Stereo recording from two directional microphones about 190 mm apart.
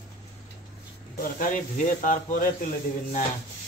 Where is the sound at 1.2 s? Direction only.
45° left (ahead or behind).